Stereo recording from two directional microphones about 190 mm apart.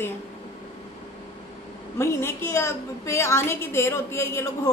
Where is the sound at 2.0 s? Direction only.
15° left (ahead or behind).